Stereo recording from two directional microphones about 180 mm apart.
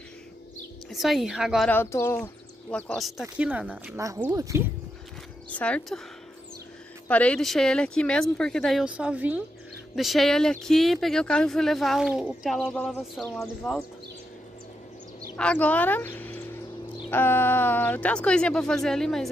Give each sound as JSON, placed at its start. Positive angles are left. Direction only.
{"t": 0.8, "sound": "speech", "side_deg": 0}
{"t": 1.7, "sound": "speech", "side_deg": 15}
{"t": 3.9, "sound": "speech", "side_deg": -15}
{"t": 5.5, "sound": "speech", "side_deg": 5}
{"t": 7.1, "sound": "speech", "side_deg": 5}
{"t": 15.3, "sound": "speech", "side_deg": 5}